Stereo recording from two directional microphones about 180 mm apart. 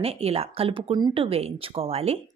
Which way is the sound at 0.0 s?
35° right (ahead or behind).